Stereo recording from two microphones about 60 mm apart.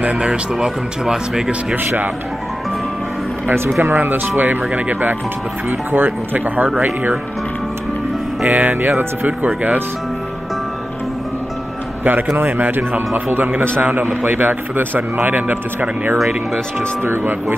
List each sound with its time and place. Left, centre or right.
0.0 s speech: centre
3.4 s a man's voice: right
8.5 s a man's voice: right
12.0 s a man's voice: right